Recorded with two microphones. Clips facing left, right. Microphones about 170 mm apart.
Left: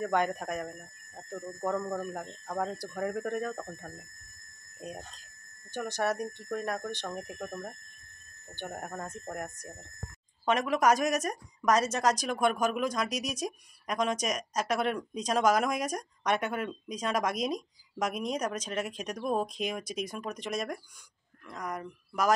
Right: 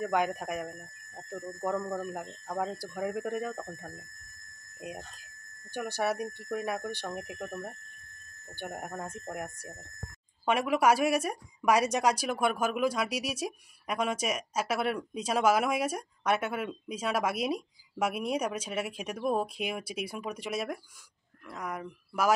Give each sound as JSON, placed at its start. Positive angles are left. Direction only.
{"t": 0.0, "sound": "speech", "side_deg": -5}
{"t": 1.3, "sound": "speech", "side_deg": 20}
{"t": 1.8, "sound": "speech", "side_deg": 0}
{"t": 4.7, "sound": "speech", "side_deg": -10}
{"t": 8.5, "sound": "speech", "side_deg": -10}